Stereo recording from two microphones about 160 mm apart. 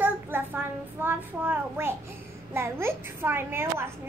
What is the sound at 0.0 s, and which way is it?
Child singing, 10° right (ahead or behind).